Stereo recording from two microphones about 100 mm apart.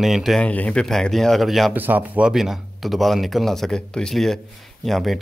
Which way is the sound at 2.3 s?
5° right (ahead or behind).